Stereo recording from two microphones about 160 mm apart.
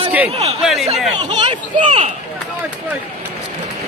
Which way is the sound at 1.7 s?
50° right (ahead or behind).